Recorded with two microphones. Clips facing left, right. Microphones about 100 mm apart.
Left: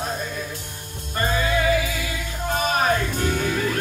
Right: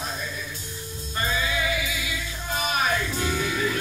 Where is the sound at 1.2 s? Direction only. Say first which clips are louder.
Left 6 dB; 50° left (ahead or behind).